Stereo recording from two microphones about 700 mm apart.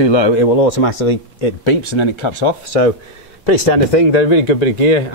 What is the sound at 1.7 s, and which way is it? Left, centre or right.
Speech, left.